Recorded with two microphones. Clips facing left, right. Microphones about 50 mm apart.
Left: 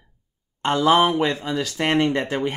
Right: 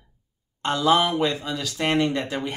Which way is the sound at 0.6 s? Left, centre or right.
Left.